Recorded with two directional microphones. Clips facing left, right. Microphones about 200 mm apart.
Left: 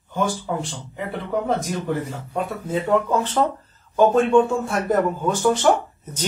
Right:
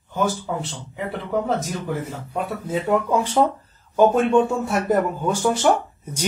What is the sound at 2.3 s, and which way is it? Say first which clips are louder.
Speech: left 1 dB; 5° right (ahead or behind).